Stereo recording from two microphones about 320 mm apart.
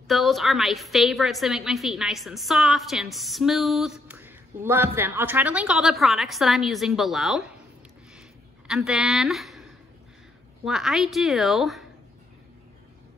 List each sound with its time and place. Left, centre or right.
0.1 s a woman's voice: centre
8.6 s a woman's voice: centre